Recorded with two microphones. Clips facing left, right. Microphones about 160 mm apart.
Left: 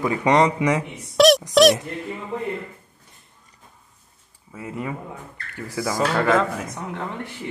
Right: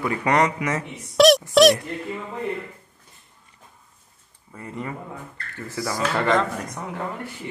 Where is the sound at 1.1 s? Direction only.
Centre (ahead or behind).